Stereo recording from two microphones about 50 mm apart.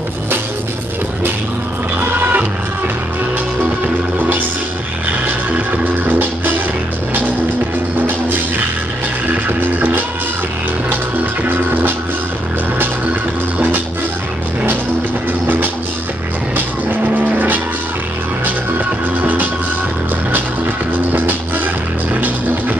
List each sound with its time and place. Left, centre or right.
2.0 s music: right
3.8 s music: right
5.5 s music: right
9.3 s music: right
11.4 s music: right
13.6 s music: right
15.4 s music: right
19.0 s music: right